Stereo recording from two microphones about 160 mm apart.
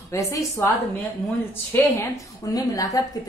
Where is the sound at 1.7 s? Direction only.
20° left (ahead or behind).